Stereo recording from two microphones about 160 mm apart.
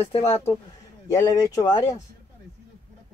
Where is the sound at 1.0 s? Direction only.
20° left (ahead or behind).